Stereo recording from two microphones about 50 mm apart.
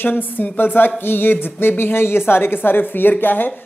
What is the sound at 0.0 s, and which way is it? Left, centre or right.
A man's voice, left.